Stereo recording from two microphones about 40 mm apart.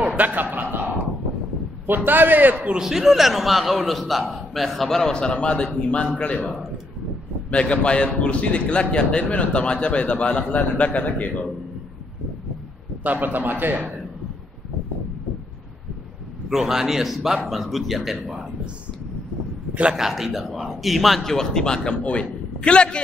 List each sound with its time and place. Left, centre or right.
0.0 s a sound: right
1.9 s a man's voice: right
2.8 s a man's voice: centre
5.1 s a man's voice: left
7.5 s a man's voice: left
13.0 s a man's voice: right
16.4 s a man's voice: centre
19.7 s a man's voice: right
20.0 s a man's voice: centre
21.2 s a man's voice: centre